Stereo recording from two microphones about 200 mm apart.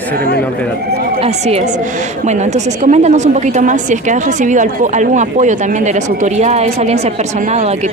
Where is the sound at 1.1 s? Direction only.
30° right (ahead or behind).